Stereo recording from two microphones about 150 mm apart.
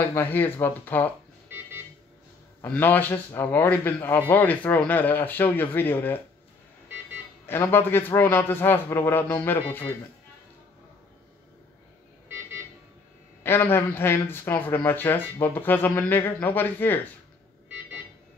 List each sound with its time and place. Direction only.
0.1 s speech: 15° left (ahead or behind)
1.5 s a sound: 15° right (ahead or behind)
2.6 s speech: 10° left (ahead or behind)
7.4 s speech: 15° left (ahead or behind)
13.4 s speech: 15° left (ahead or behind)